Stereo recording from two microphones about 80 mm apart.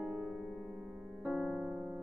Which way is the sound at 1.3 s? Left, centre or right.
Centre.